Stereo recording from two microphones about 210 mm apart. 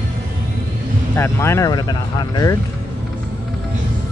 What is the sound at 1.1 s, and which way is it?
Speech, 10° left (ahead or behind).